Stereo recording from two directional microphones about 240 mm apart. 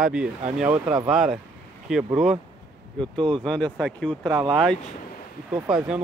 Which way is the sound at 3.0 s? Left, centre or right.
Centre.